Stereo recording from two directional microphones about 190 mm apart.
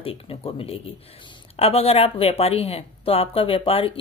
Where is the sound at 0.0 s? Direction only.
30° left (ahead or behind).